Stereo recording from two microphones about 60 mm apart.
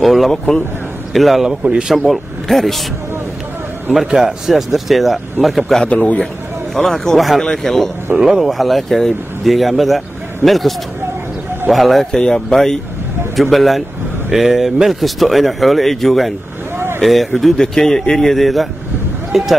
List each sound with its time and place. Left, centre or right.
0.0 s speech: centre
1.6 s speech: centre
2.0 s speech: centre
3.9 s speech: centre
5.9 s a man's voice: left
6.7 s speech: centre
8.2 s speech: centre
11.7 s speech: centre
16.7 s vehicle: right
17.0 s speech: centre